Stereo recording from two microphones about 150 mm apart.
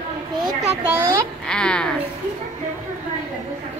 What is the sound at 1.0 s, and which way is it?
Speech, 5° left (ahead or behind).